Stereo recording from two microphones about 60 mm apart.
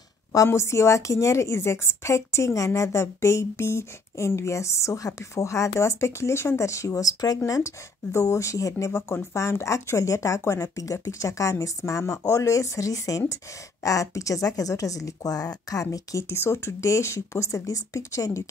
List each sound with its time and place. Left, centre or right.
0.5 s a woman's voice: left
7.4 s a woman's voice: left
8.1 s a woman's voice: left
16.3 s a woman's voice: left